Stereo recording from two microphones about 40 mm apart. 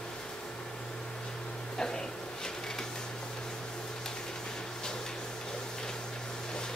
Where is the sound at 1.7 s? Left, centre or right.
Centre.